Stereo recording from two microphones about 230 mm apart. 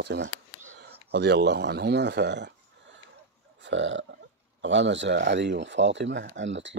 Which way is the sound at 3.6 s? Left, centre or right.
Right.